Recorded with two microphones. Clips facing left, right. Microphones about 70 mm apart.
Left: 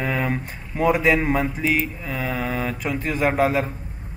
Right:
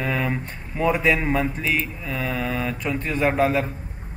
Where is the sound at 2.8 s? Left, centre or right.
Centre.